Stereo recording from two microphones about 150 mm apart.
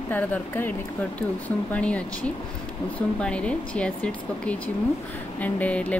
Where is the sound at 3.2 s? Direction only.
5° left (ahead or behind).